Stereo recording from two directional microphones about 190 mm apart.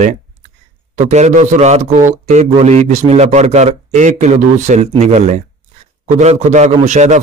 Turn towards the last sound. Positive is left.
turn(degrees=-40)  # may be behind; listen again after turning